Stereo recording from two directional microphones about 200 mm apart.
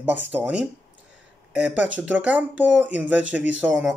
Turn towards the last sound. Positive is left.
turn(degrees=-5)  # may be behind; listen again after turning